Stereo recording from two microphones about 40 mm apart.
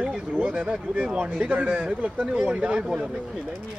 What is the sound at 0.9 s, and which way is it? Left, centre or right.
Speech, right.